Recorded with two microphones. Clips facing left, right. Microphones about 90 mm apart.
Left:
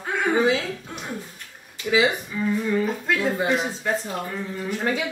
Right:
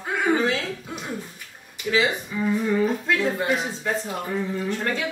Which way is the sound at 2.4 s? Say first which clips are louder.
Right 1 dB; 10° right (ahead or behind).